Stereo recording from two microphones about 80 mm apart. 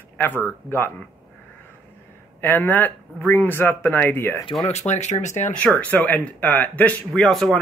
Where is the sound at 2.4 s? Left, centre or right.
Left.